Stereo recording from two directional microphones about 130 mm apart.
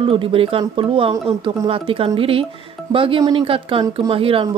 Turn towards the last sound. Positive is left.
turn(degrees=-45)  # may be behind; listen again after turning